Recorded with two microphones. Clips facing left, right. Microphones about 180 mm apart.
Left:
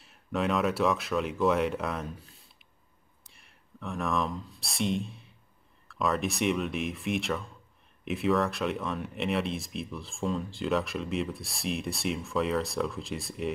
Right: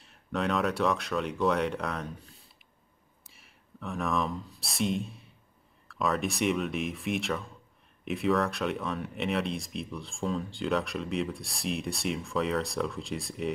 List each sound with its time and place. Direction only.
0.0 s speech: centre (ahead or behind)